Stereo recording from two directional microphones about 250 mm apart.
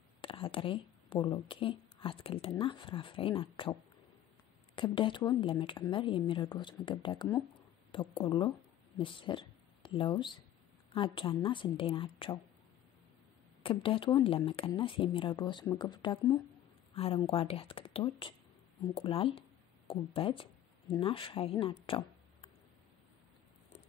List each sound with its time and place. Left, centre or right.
0.2 s speech: left
4.7 s speech: centre
13.6 s speech: left